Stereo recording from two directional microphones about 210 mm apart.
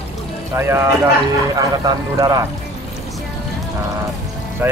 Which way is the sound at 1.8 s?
15° right (ahead or behind).